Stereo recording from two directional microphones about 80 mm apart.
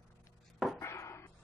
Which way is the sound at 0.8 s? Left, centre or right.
Left.